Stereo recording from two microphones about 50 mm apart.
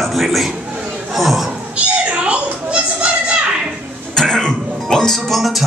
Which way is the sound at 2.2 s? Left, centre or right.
Right.